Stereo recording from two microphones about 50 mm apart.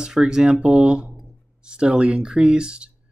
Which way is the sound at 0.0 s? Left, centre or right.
Centre.